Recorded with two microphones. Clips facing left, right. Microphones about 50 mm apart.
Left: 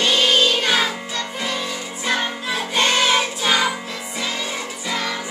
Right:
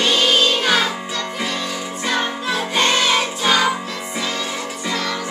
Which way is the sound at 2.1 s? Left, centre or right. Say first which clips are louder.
Right 1 dB; centre.